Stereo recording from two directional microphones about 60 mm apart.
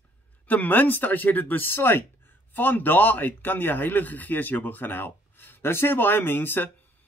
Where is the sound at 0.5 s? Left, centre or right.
Left.